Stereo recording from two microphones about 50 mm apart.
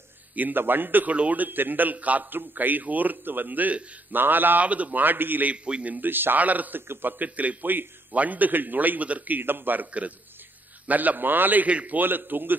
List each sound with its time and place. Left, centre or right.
0.4 s a man's voice: right
5.5 s a man's voice: right
5.9 s a man's voice: right
12.0 s a man's voice: right